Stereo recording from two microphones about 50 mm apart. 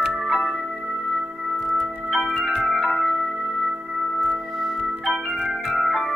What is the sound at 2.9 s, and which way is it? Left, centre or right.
Music, centre.